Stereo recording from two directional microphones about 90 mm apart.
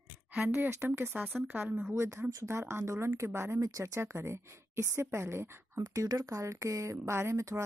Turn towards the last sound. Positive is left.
turn(degrees=-35)  # may be behind; listen again after turning